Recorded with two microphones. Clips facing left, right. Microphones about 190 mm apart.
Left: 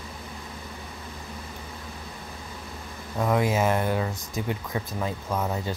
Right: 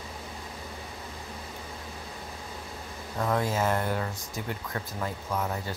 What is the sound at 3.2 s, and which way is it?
Speech, 15° left (ahead or behind).